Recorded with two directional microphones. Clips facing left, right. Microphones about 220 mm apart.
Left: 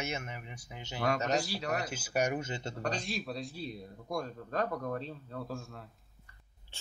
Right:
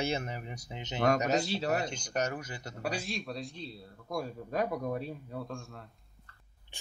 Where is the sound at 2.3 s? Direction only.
25° left (ahead or behind).